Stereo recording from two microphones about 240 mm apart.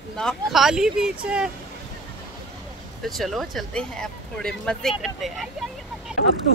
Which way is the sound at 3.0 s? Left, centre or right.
Centre.